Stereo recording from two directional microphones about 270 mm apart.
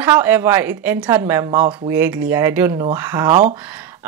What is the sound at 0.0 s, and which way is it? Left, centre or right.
Speech, centre.